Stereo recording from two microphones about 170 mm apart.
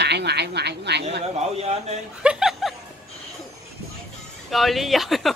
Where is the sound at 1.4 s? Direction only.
40° right (ahead or behind).